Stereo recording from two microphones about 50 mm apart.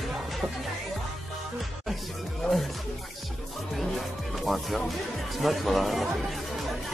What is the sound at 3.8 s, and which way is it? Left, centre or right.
Music, centre.